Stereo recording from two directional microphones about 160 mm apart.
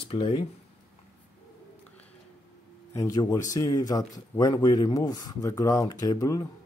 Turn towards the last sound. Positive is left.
turn(degrees=20)  # may be behind; listen again after turning